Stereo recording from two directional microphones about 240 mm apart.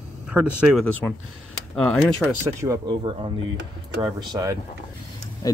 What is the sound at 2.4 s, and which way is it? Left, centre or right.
Speech, centre.